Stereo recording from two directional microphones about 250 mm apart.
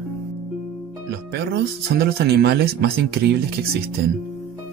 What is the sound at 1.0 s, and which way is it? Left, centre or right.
Speech, right.